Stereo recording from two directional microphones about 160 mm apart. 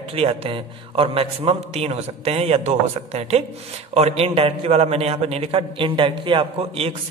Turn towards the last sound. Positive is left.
turn(degrees=-35)  # may be behind; listen again after turning